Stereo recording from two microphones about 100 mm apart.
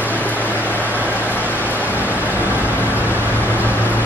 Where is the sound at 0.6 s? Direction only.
15° left (ahead or behind).